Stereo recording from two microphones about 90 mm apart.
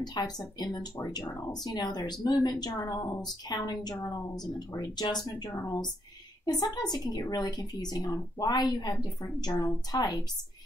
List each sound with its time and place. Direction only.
0.0 s a woman's voice: 50° left (ahead or behind)